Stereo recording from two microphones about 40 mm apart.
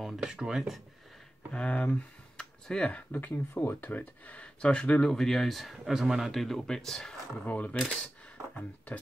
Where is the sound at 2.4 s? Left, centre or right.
Centre.